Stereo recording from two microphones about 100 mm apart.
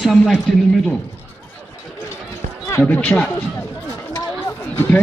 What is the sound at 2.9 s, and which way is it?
Speech, 20° left (ahead or behind).